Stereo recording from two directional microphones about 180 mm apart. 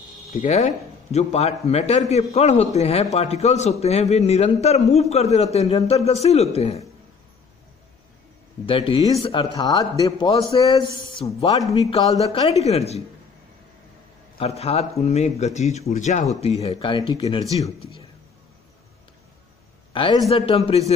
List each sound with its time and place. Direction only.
0.3 s a man's voice: 40° left (ahead or behind)
8.6 s speech: 30° left (ahead or behind)
12.2 s a man's voice: 35° left (ahead or behind)
14.4 s a man's voice: 35° left (ahead or behind)
19.9 s a man's voice: 30° left (ahead or behind)